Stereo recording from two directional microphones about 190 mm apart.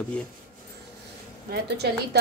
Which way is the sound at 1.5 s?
60° right (ahead or behind).